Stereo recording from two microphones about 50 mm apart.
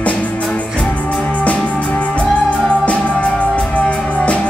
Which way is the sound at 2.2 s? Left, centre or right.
Left.